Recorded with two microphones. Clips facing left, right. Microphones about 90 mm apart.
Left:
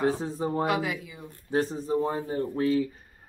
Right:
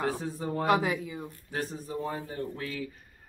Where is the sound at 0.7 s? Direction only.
30° right (ahead or behind).